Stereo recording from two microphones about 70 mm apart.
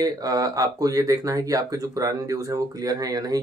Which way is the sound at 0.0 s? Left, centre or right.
Right.